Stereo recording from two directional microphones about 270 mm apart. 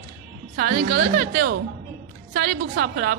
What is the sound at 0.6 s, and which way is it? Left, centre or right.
A woman's voice, right.